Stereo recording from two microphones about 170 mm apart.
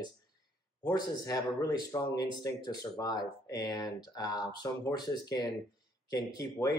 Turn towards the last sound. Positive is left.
turn(degrees=20)  # may be behind; listen again after turning